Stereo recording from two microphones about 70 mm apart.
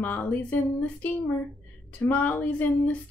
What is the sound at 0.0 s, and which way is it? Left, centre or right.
A woman's voice, left.